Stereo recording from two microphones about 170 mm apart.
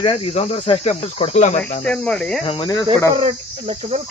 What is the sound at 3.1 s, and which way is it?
Cricket, 35° right (ahead or behind).